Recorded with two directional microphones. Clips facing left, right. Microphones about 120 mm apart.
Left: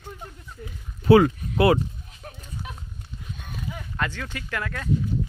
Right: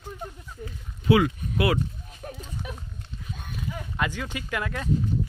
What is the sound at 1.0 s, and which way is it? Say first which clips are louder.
Speech: left 5 dB; 40° left (ahead or behind).